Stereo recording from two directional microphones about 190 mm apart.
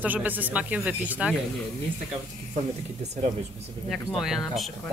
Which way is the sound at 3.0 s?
35° right (ahead or behind).